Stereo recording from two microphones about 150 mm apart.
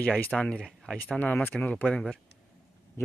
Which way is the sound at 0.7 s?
Centre (ahead or behind).